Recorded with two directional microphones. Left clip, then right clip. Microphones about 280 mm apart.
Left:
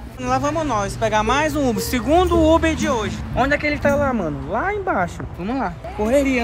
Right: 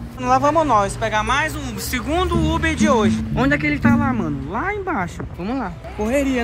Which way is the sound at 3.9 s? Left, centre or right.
Centre.